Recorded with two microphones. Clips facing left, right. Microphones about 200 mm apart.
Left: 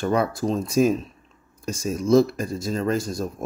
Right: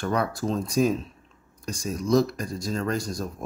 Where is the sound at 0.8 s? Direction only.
15° left (ahead or behind).